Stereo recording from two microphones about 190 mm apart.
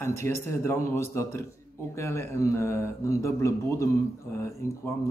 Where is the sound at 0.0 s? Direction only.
15° left (ahead or behind).